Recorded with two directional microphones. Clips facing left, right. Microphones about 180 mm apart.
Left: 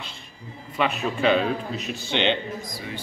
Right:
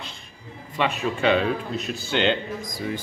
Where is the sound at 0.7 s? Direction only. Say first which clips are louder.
Even; centre (ahead or behind).